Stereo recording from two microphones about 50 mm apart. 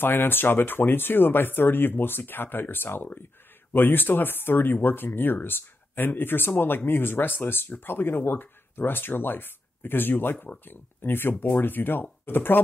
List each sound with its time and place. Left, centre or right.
0.0 s speech: left